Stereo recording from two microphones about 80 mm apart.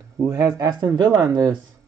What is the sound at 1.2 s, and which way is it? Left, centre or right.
Speech, right.